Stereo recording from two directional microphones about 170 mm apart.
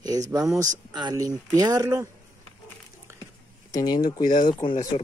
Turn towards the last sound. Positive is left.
turn(degrees=35)  # may be behind; listen again after turning